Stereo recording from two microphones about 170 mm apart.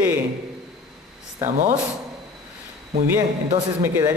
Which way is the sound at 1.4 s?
50° right (ahead or behind).